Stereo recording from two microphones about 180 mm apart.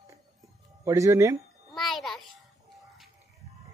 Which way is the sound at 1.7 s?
Centre (ahead or behind).